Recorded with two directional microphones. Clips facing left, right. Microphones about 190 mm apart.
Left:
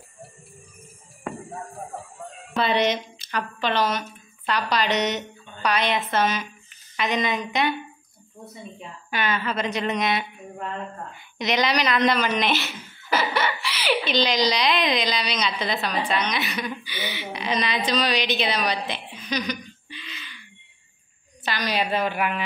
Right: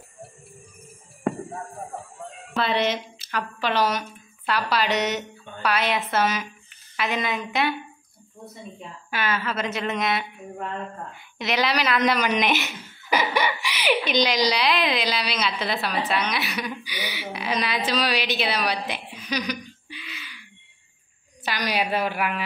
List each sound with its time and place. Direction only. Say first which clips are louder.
1.5 s a sound: right 1 dB; centre (ahead or behind)
2.5 s a woman's voice: left 2 dB; centre (ahead or behind)
12.1 s a woman's voice: even; 15° right (ahead or behind)
13.0 s laughter: right 1 dB; 15° right (ahead or behind)
13.6 s giggle: right 1 dB; 15° right (ahead or behind)
14.0 s a woman's voice: even; 10° right (ahead or behind)
19.0 s a sound: left 1 dB; 15° right (ahead or behind)
21.5 s a woman's voice: even; 10° right (ahead or behind)